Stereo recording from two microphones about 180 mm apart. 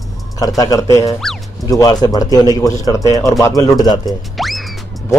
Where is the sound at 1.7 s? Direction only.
20° left (ahead or behind).